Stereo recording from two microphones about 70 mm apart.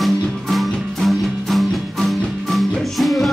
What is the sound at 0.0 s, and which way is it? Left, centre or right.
Music, centre.